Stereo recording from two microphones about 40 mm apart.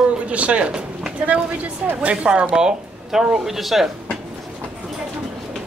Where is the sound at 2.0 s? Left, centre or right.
Right.